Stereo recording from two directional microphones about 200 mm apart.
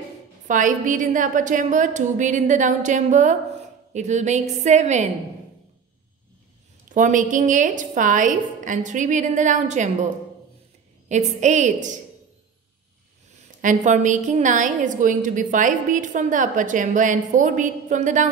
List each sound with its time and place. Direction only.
0.5 s a woman's voice: 40° right (ahead or behind)
6.9 s a woman's voice: 40° right (ahead or behind)
11.1 s a woman's voice: 35° right (ahead or behind)
13.6 s a woman's voice: 40° right (ahead or behind)